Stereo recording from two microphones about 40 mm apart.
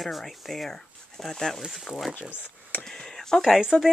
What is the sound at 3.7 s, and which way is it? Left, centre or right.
Speech, left.